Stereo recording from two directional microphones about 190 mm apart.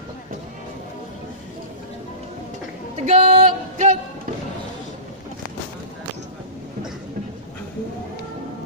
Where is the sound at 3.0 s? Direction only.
35° right (ahead or behind).